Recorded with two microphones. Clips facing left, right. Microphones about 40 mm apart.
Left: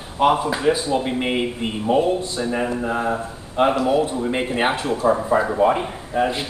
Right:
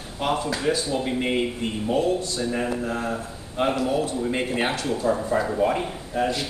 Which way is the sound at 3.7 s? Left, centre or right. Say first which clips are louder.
Left 5 dB; left.